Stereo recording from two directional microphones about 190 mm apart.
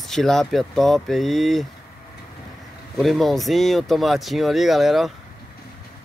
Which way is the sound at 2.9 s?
Centre (ahead or behind).